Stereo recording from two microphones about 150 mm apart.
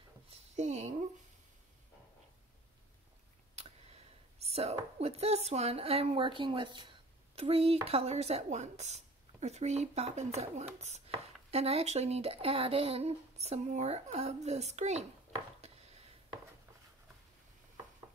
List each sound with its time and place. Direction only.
0.3 s a sound: 50° right (ahead or behind)
3.5 s speech: 45° right (ahead or behind)
11.5 s speech: 45° right (ahead or behind)